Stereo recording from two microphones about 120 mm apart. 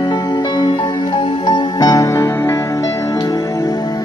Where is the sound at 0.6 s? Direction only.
40° left (ahead or behind).